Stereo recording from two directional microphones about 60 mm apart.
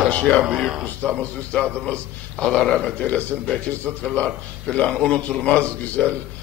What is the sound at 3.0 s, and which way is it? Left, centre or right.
Speech, left.